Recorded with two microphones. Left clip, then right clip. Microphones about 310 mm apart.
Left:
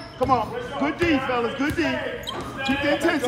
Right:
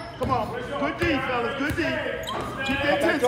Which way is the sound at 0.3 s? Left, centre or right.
Left.